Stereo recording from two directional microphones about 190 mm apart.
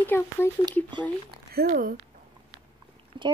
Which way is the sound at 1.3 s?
55° right (ahead or behind).